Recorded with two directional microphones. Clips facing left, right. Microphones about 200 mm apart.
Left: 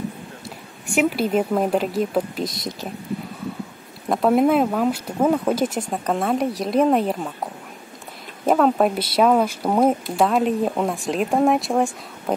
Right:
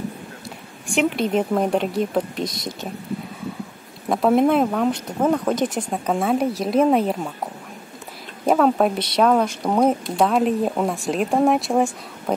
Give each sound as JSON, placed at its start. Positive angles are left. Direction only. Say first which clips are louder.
{"t": 0.9, "sound": "speech", "louder": "even", "side_deg": 5}
{"t": 4.1, "sound": "speech", "louder": "even", "side_deg": 0}
{"t": 8.5, "sound": "speech", "louder": "even", "side_deg": 0}